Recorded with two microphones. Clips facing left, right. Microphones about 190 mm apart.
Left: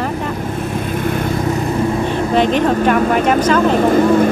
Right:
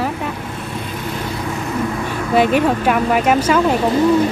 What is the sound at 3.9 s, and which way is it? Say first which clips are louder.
Speech: left 2 dB; 50° left (ahead or behind).